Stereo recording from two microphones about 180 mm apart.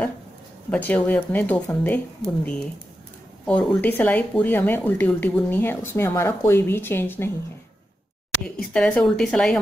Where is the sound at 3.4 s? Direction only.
5° left (ahead or behind).